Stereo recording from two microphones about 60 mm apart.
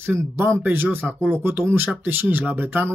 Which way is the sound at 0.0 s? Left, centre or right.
Right.